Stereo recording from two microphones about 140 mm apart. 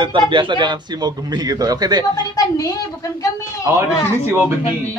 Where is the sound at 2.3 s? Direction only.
25° left (ahead or behind).